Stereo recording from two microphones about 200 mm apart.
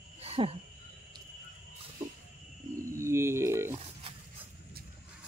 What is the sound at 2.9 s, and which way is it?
Speech, 15° right (ahead or behind).